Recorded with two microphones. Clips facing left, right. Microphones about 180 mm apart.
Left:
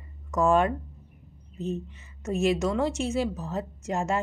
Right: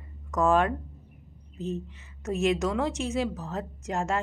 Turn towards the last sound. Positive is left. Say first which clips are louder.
# left 1 dB
turn(degrees=5)  # may be behind; listen again after turning